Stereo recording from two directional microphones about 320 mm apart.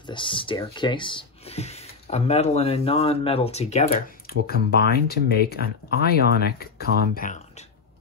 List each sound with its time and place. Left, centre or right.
0.0 s speech: centre